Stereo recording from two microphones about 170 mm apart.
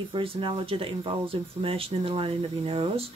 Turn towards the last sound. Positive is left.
turn(degrees=-30)  # may be behind; listen again after turning